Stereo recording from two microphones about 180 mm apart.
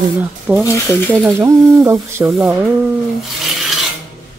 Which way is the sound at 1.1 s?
10° right (ahead or behind).